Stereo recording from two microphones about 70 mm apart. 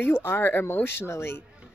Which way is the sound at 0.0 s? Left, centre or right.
Left.